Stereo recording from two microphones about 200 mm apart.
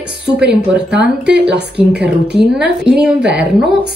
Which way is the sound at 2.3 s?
55° right (ahead or behind).